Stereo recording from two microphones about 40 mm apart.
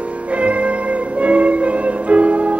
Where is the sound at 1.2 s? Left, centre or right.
Right.